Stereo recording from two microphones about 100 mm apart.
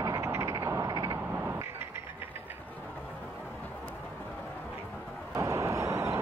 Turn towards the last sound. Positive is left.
turn(degrees=-30)  # may be behind; listen again after turning